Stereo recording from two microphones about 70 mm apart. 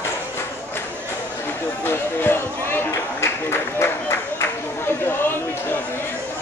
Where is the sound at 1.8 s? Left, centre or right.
Left.